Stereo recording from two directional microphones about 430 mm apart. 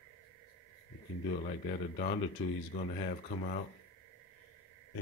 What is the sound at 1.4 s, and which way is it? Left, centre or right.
Speech, centre.